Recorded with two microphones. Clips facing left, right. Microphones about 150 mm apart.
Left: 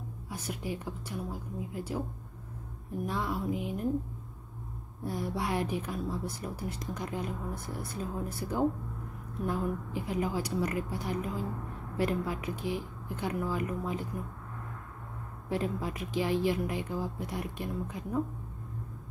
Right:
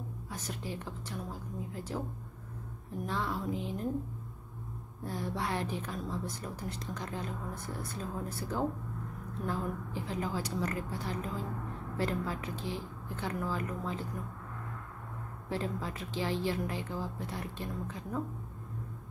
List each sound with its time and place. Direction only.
0.3 s a woman's voice: 10° left (ahead or behind)
3.1 s a woman's voice: 10° left (ahead or behind)
5.0 s a woman's voice: 10° left (ahead or behind)
15.5 s a woman's voice: 15° left (ahead or behind)